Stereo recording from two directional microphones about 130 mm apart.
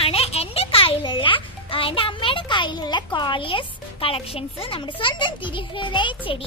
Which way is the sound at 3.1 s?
35° left (ahead or behind).